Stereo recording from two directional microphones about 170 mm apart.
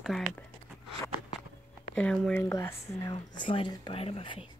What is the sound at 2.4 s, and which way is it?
Speech, 20° left (ahead or behind).